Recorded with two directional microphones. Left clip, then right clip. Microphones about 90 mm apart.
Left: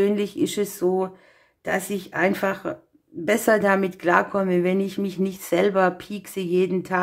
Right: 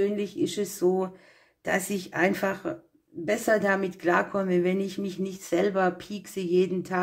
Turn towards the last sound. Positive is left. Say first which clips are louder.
# left 3 dB
turn(degrees=35)  # may be behind; listen again after turning